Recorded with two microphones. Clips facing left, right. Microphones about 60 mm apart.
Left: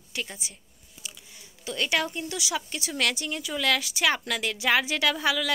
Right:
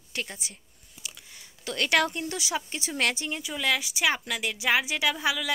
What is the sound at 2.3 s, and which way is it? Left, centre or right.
Speech, right.